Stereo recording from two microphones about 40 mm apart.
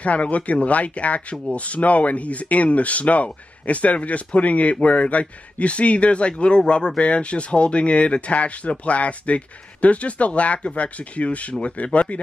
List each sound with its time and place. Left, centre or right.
0.0 s speech: left